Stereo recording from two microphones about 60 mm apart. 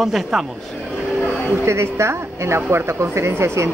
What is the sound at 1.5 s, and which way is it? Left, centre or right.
A woman's voice, right.